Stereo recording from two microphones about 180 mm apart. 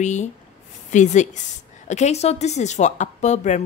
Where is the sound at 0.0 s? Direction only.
40° left (ahead or behind).